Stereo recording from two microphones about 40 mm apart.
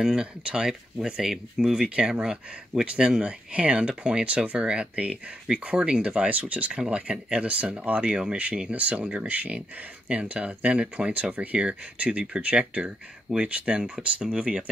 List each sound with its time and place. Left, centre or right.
0.0 s speech: centre
2.0 s speech: right
6.0 s speech: right
6.7 s speech: right
8.6 s speech: right
12.5 s speech: right